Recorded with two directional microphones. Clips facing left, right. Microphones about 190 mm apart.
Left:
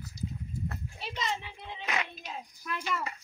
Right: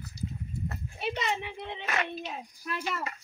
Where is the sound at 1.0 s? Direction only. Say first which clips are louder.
Right 6 dB; 60° right (ahead or behind).